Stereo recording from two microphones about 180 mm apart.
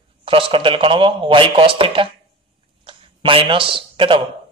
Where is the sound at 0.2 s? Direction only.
30° right (ahead or behind).